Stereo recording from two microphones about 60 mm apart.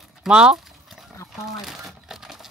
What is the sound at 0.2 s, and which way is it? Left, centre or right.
Speech, centre.